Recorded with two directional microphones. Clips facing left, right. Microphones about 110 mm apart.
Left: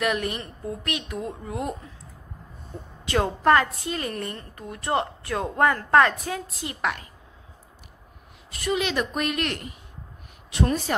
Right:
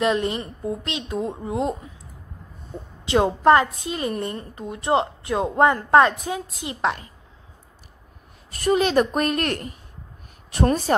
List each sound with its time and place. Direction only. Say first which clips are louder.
0.0 s a woman's voice: right 4 dB; 25° right (ahead or behind)
3.1 s a woman's voice: right 4 dB; 20° right (ahead or behind)
8.5 s a woman's voice: right 6 dB; 45° right (ahead or behind)